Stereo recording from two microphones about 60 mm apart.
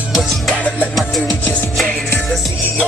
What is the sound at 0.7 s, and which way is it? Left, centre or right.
Music, left.